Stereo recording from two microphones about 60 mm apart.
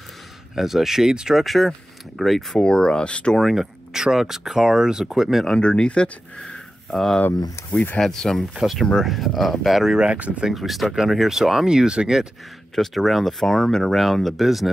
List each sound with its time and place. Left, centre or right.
0.6 s speech: centre
1.4 s speech: centre
2.5 s speech: centre
3.5 s speech: centre
5.6 s speech: centre
9.9 s speech: right
10.5 s speech: centre
12.7 s speech: centre